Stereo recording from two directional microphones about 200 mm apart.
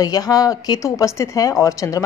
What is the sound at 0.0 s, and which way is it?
Speech, 20° left (ahead or behind).